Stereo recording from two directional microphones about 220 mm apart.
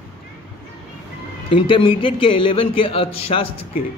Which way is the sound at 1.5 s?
25° left (ahead or behind).